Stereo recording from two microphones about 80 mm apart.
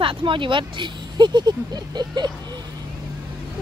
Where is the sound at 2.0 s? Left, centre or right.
Right.